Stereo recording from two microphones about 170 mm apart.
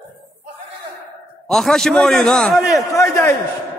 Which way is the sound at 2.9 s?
15° left (ahead or behind).